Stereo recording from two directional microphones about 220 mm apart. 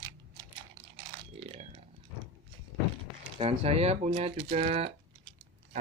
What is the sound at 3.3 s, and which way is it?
Speech, 25° right (ahead or behind).